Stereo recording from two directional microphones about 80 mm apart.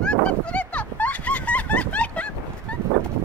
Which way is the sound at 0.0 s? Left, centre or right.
Centre.